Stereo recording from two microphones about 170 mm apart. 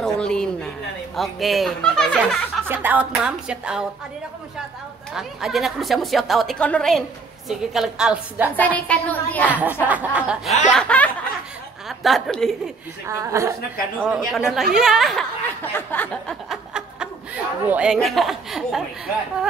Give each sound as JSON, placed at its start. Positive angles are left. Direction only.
{"t": 0.0, "sound": "a sound", "side_deg": 5}
{"t": 1.1, "sound": "a woman's voice", "side_deg": 0}
{"t": 2.7, "sound": "speech", "side_deg": -10}
{"t": 5.1, "sound": "a woman's voice", "side_deg": 0}
{"t": 8.5, "sound": "a woman's voice", "side_deg": 10}
{"t": 9.5, "sound": "speech", "side_deg": -10}
{"t": 10.7, "sound": "snicker", "side_deg": 5}
{"t": 11.9, "sound": "a woman's voice", "side_deg": 0}
{"t": 13.0, "sound": "speech", "side_deg": -20}
{"t": 13.9, "sound": "a woman's voice", "side_deg": 0}
{"t": 15.7, "sound": "a sound", "side_deg": 10}
{"t": 17.6, "sound": "a woman's voice", "side_deg": -5}